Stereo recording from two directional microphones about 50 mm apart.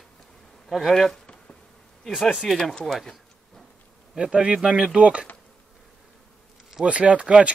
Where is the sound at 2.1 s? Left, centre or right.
Centre.